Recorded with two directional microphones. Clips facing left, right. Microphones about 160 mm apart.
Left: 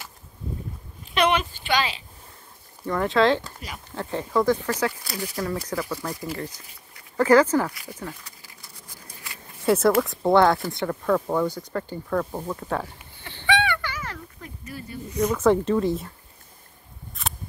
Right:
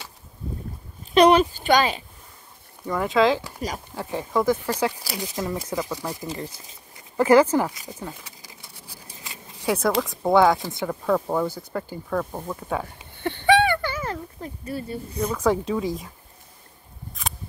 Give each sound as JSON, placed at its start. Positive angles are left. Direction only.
{"t": 1.1, "sound": "speech", "side_deg": -35}
{"t": 2.9, "sound": "speech", "side_deg": -5}
{"t": 9.1, "sound": "a sound", "side_deg": -25}
{"t": 9.7, "sound": "speech", "side_deg": 0}
{"t": 13.2, "sound": "a sound", "side_deg": -55}
{"t": 15.3, "sound": "speech", "side_deg": 0}